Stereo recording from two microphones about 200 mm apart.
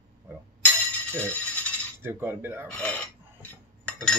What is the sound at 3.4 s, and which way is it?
Cutlery, 5° left (ahead or behind).